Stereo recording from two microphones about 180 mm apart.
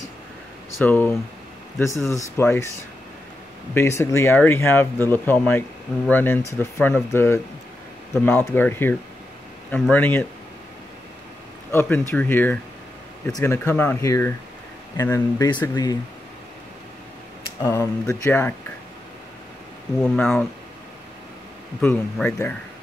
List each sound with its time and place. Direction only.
0.7 s speech: 10° left (ahead or behind)
3.7 s speech: 15° left (ahead or behind)
11.7 s speech: 10° left (ahead or behind)
17.6 s speech: 15° left (ahead or behind)
20.2 s speech: 5° left (ahead or behind)
21.8 s speech: 10° left (ahead or behind)